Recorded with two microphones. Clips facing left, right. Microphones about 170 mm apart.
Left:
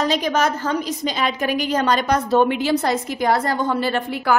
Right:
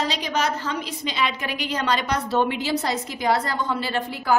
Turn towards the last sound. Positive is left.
turn(degrees=60)  # may be behind; listen again after turning